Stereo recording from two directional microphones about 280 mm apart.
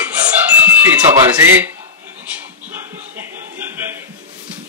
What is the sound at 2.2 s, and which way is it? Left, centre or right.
Music, centre.